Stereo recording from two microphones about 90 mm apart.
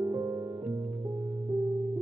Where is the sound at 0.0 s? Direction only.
30° right (ahead or behind).